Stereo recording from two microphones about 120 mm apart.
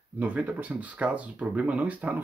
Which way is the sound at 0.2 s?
10° right (ahead or behind).